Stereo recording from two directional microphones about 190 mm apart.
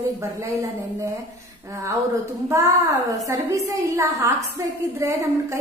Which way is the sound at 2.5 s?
15° right (ahead or behind).